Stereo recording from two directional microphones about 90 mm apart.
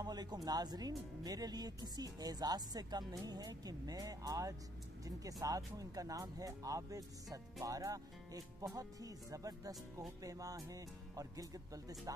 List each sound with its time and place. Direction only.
0.0 s speech: 50° right (ahead or behind)